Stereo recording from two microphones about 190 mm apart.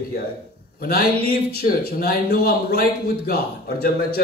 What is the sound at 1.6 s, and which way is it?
Speech, 50° left (ahead or behind).